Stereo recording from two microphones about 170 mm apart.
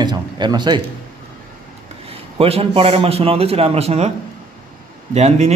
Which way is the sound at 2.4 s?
35° right (ahead or behind).